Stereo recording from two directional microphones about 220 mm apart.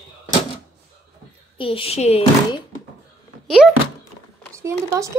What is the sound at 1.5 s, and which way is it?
Speech, 25° left (ahead or behind).